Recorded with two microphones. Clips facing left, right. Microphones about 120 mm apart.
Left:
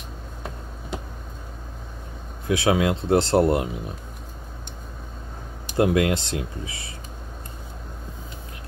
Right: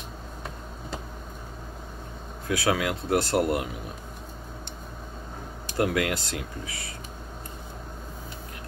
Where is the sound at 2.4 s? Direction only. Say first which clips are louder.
Left 5 dB; 20° left (ahead or behind).